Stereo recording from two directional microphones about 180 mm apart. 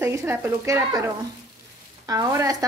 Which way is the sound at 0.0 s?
10° right (ahead or behind).